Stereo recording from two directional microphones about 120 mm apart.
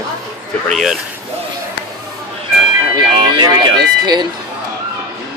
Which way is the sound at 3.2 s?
40° right (ahead or behind).